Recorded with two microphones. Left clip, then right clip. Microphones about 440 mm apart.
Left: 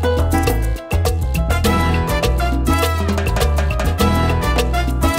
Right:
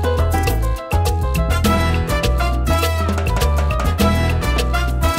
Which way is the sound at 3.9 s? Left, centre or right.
Left.